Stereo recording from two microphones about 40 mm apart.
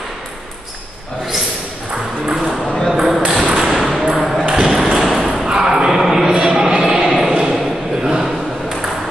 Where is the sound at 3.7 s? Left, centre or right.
Centre.